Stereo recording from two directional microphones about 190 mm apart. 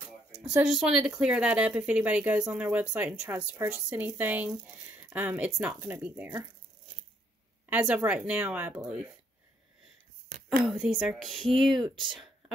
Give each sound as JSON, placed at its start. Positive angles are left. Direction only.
{"t": 0.5, "sound": "speech", "side_deg": -5}
{"t": 7.7, "sound": "speech", "side_deg": -5}
{"t": 10.6, "sound": "speech", "side_deg": -5}
{"t": 11.8, "sound": "speech", "side_deg": -25}
{"t": 12.1, "sound": "a sound", "side_deg": 0}